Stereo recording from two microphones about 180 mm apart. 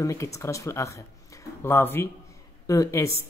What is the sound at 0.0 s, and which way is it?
Speech, 15° left (ahead or behind).